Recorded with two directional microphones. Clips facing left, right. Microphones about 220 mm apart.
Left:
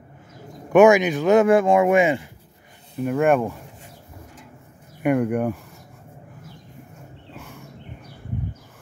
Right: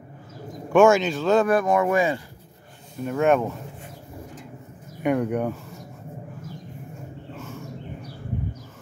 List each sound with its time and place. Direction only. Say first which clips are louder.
0.7 s speech: left 3 dB; 15° left (ahead or behind)
3.0 s speech: left 2 dB; 10° left (ahead or behind)
5.0 s speech: left 2 dB; centre (ahead or behind)
7.3 s a sound: right 3 dB; 15° left (ahead or behind)